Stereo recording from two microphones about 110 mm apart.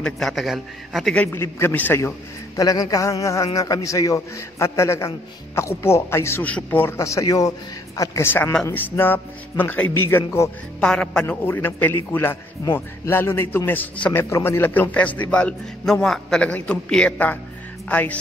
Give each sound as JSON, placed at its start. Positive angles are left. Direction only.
{"t": 0.0, "sound": "a man's voice", "side_deg": 0}
{"t": 1.1, "sound": "a man's voice", "side_deg": 20}
{"t": 2.5, "sound": "a man's voice", "side_deg": 35}
{"t": 7.0, "sound": "a man's voice", "side_deg": 30}
{"t": 10.8, "sound": "a man's voice", "side_deg": 5}
{"t": 11.2, "sound": "a man's voice", "side_deg": 20}